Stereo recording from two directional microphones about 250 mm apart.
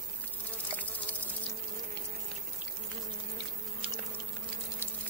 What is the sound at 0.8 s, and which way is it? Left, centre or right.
Insect, centre.